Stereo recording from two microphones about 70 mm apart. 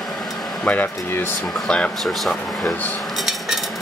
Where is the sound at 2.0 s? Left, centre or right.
Centre.